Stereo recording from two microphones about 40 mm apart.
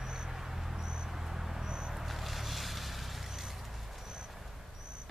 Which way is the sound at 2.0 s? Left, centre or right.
Centre.